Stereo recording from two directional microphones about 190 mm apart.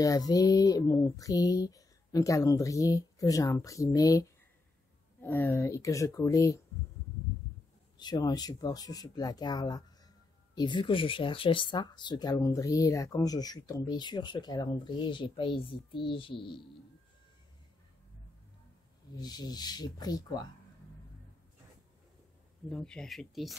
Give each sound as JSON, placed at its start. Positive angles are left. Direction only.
{"t": 0.0, "sound": "speech", "side_deg": 20}
{"t": 8.0, "sound": "speech", "side_deg": 20}
{"t": 19.1, "sound": "speech", "side_deg": 20}
{"t": 22.7, "sound": "speech", "side_deg": 5}